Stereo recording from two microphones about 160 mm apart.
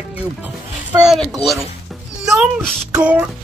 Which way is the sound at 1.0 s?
Centre (ahead or behind).